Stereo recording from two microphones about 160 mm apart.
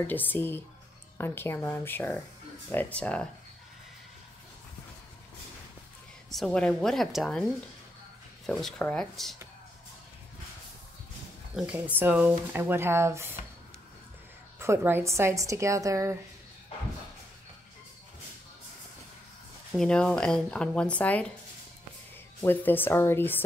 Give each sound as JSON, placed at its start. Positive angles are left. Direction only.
{"t": 0.0, "sound": "speech", "side_deg": 10}
{"t": 6.3, "sound": "speech", "side_deg": 5}
{"t": 8.5, "sound": "speech", "side_deg": 5}
{"t": 11.5, "sound": "a woman's voice", "side_deg": -10}
{"t": 14.6, "sound": "a woman's voice", "side_deg": -15}
{"t": 19.7, "sound": "speech", "side_deg": 5}
{"t": 22.4, "sound": "speech", "side_deg": 15}